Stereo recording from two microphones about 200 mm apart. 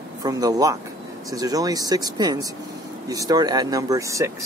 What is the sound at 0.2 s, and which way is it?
Speech, 20° right (ahead or behind).